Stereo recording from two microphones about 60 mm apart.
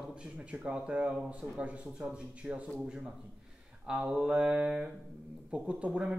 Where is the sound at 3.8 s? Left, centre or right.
Centre.